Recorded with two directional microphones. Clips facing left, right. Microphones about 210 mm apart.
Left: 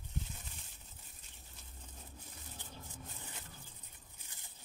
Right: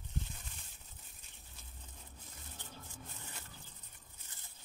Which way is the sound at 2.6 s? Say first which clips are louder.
Even; 15° left (ahead or behind).